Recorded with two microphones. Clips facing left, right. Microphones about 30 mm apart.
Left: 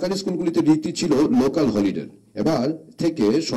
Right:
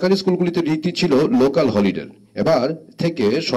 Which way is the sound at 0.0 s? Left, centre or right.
Right.